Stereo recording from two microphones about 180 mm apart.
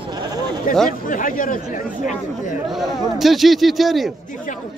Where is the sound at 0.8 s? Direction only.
50° left (ahead or behind).